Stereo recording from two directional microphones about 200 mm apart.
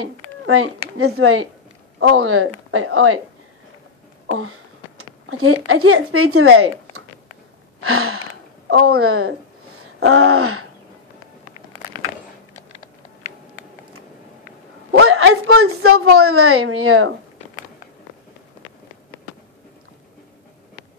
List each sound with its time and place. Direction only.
0.0 s a woman's voice: 90° right
4.3 s a woman's voice: 90° right
8.6 s a woman's voice: 80° right
14.9 s a woman's voice: 75° right (ahead or behind)